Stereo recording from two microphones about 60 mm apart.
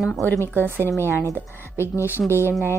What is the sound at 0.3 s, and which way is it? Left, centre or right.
Speech, left.